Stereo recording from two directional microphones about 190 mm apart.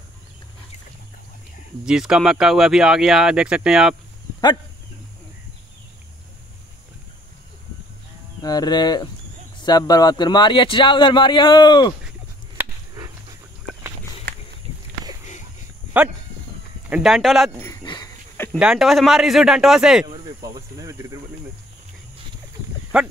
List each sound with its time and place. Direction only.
1.9 s speech: 5° right (ahead or behind)
8.4 s a man's voice: 20° left (ahead or behind)
12.5 s a sound: 20° right (ahead or behind)
14.3 s a sound: 55° right (ahead or behind)
16.0 s speech: 5° right (ahead or behind)
17.8 s dog: 20° left (ahead or behind)
18.6 s speech: 5° right (ahead or behind)
20.4 s speech: 20° right (ahead or behind)
22.9 s speech: 5° right (ahead or behind)